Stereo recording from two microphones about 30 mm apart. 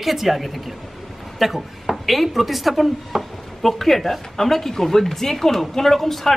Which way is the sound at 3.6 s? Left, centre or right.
Centre.